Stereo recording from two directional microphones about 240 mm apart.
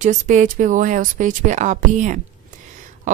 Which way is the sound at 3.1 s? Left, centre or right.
Right.